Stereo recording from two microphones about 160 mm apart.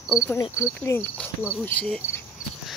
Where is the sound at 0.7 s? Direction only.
10° left (ahead or behind).